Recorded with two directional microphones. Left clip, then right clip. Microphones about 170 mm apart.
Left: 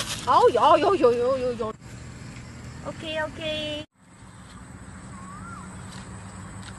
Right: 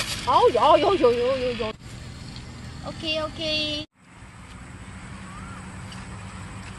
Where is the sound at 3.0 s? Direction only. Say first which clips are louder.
Right 3 dB; 60° left (ahead or behind).